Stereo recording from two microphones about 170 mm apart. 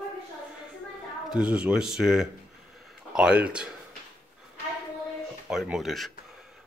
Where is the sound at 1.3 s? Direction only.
5° right (ahead or behind).